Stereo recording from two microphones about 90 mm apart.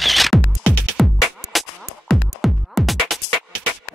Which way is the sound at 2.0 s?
Centre (ahead or behind).